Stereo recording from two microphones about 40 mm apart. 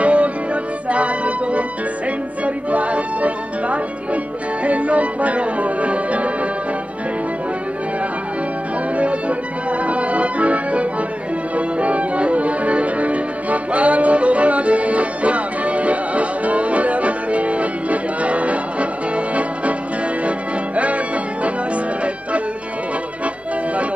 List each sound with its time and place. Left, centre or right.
0.0 s music: right
8.9 s music: right